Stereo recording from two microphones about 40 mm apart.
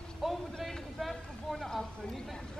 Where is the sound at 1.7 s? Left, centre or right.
Centre.